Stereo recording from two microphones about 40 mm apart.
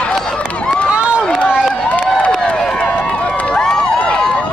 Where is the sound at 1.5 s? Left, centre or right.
Centre.